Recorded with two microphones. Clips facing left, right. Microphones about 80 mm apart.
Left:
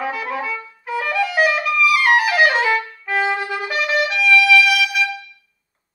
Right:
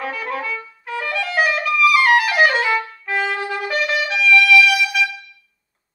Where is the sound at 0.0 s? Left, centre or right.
Centre.